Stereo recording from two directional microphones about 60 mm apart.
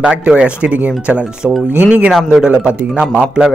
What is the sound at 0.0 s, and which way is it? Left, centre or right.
A man's voice, centre.